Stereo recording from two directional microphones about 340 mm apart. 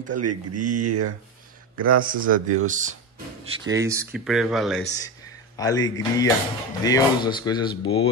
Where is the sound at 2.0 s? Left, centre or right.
Right.